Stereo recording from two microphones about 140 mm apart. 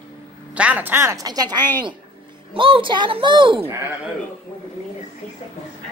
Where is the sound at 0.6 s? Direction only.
10° right (ahead or behind); by 1.6 s 25° right (ahead or behind).